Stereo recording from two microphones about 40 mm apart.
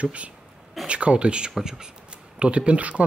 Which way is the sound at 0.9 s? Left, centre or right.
Right.